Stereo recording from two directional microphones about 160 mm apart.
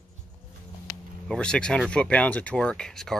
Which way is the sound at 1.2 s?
5° left (ahead or behind).